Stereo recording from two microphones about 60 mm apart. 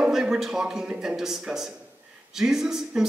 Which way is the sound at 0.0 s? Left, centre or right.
Centre.